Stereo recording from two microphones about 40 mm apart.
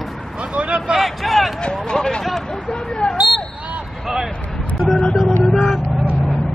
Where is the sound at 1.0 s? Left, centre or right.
Centre.